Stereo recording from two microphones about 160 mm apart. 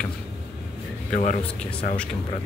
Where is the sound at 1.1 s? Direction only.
50° left (ahead or behind).